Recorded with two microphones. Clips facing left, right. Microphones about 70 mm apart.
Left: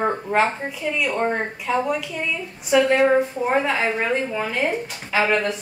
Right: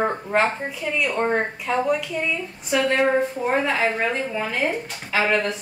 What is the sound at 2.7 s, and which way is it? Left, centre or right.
Speech, centre.